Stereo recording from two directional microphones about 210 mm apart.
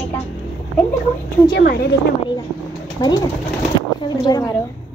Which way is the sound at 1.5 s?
50° left (ahead or behind).